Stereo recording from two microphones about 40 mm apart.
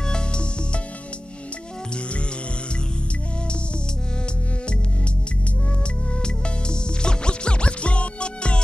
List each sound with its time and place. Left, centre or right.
0.0 s music: left
6.2 s music: left